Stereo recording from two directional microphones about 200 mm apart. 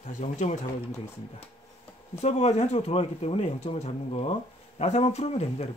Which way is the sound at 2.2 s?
35° left (ahead or behind).